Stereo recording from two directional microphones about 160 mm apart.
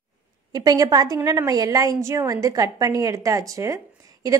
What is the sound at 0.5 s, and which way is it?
A woman's voice, 25° right (ahead or behind).